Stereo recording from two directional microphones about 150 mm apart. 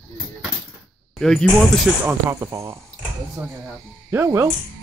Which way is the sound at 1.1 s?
5° left (ahead or behind).